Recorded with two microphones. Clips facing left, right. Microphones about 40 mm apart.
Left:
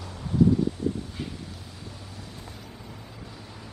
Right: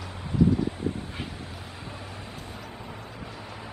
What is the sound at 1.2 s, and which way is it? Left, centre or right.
Dog, right.